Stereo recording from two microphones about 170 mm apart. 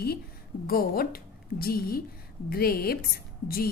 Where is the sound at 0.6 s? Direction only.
60° left (ahead or behind).